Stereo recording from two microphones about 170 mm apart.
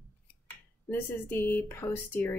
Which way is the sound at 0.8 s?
10° left (ahead or behind).